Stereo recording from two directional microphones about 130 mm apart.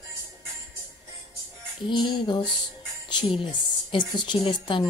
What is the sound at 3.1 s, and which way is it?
A woman's voice, 40° left (ahead or behind).